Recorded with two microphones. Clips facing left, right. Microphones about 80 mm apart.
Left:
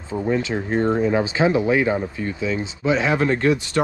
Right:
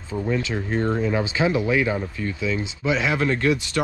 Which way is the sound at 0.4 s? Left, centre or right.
Left.